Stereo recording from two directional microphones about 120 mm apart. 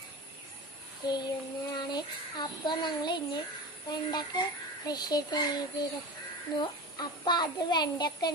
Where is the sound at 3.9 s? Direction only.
35° left (ahead or behind).